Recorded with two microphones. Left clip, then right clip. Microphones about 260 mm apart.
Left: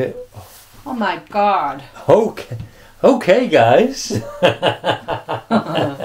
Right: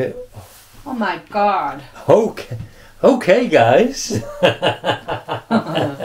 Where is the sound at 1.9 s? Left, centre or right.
Centre.